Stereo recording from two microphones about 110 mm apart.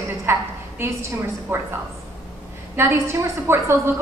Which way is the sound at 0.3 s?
25° right (ahead or behind).